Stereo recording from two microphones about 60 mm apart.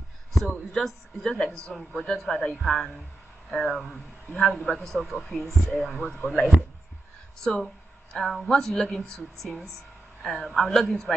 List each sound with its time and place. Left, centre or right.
0.3 s speech: centre
6.0 s speech: centre
7.4 s speech: centre